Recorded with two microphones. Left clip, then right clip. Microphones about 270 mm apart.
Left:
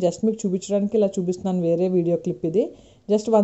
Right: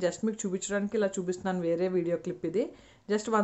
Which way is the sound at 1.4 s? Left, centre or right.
Centre.